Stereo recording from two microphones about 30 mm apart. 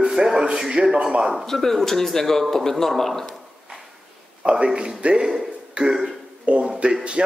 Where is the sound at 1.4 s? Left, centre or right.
Centre.